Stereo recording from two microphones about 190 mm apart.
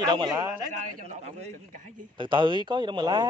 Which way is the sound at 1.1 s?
35° right (ahead or behind).